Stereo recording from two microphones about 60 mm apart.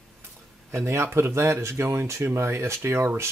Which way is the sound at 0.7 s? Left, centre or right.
Right.